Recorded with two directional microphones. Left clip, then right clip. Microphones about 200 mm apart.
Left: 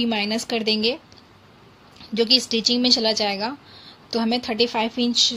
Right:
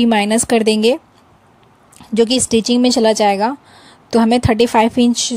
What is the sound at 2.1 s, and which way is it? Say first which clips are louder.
Speech: right 5 dB; 40° right (ahead or behind).